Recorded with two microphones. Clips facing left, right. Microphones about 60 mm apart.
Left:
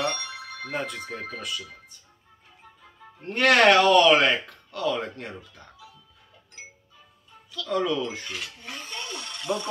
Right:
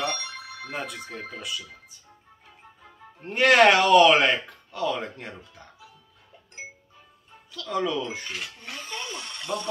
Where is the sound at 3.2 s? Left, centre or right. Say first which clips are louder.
Right 1 dB; centre.